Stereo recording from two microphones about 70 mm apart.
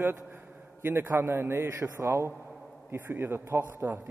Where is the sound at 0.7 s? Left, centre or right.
Right.